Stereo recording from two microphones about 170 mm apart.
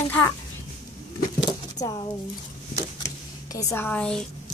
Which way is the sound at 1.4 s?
25° left (ahead or behind).